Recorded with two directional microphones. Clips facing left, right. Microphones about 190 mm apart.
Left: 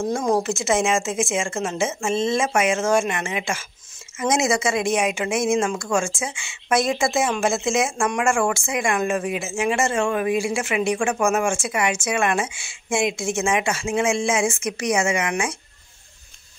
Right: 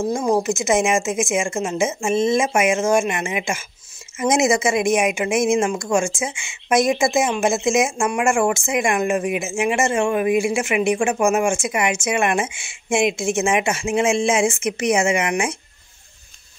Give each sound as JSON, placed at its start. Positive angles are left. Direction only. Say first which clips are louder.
{"t": 0.1, "sound": "a woman's voice", "louder": "right 1 dB", "side_deg": -10}